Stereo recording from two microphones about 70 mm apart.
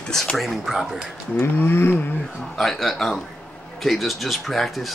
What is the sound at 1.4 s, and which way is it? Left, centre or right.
Speech, left.